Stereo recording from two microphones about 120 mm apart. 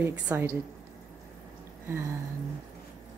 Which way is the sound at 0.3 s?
20° right (ahead or behind).